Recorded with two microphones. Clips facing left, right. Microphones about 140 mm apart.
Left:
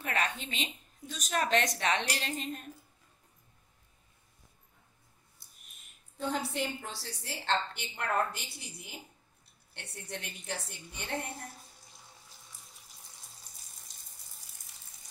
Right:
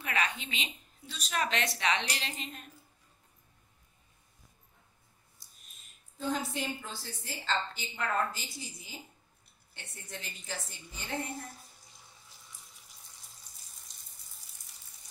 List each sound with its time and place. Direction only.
0.0 s a woman's voice: 45° left (ahead or behind)
5.4 s a sound: 60° left (ahead or behind)
6.1 s a woman's voice: 70° left (ahead or behind)